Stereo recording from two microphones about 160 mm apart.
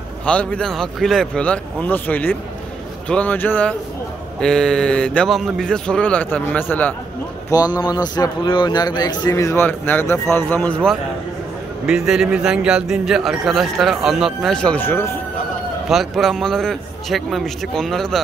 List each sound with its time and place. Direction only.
0.2 s a man's voice: 10° left (ahead or behind)
7.5 s speech: 25° left (ahead or behind); by 11.0 s 5° left (ahead or behind)
11.8 s a man's voice: 5° right (ahead or behind); by 15.0 s 10° left (ahead or behind)
15.9 s a man's voice: centre (ahead or behind)